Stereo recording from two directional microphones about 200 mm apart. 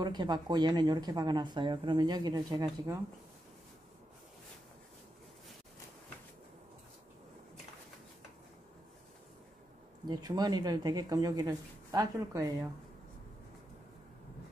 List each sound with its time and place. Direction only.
0.0 s speech: 20° right (ahead or behind)
10.0 s speech: 20° right (ahead or behind)